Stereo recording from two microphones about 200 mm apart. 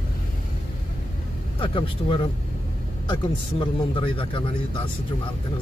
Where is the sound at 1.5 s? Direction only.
25° left (ahead or behind).